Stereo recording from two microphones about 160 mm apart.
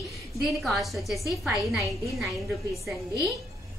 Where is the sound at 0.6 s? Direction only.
Centre (ahead or behind).